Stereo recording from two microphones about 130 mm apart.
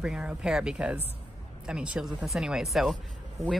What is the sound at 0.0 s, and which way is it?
Speech, 5° right (ahead or behind).